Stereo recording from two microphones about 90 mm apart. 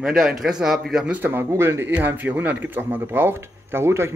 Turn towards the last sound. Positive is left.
turn(degrees=-30)  # may be behind; listen again after turning